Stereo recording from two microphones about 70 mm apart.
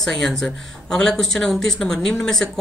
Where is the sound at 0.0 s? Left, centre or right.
Centre.